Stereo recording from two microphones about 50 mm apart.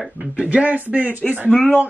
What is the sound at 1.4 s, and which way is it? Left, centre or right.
Speech, left.